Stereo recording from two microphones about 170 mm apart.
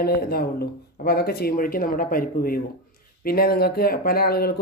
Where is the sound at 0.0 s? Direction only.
65° left (ahead or behind).